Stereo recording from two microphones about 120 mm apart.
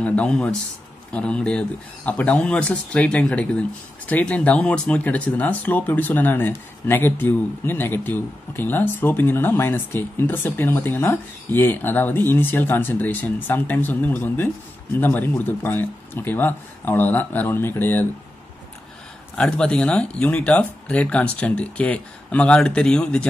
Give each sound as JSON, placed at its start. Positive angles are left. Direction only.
{"t": 0.0, "sound": "speech", "side_deg": 10}
{"t": 19.3, "sound": "speech", "side_deg": 5}